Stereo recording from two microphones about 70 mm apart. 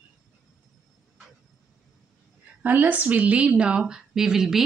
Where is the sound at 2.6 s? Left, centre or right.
Right; by 4.6 s centre.